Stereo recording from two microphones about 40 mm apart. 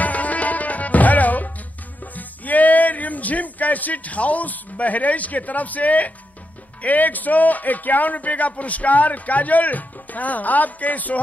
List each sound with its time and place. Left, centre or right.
0.0 s tabla: left
2.1 s speech: left